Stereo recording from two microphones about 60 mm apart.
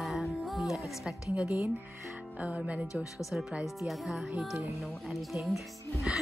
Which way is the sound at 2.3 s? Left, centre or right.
Centre.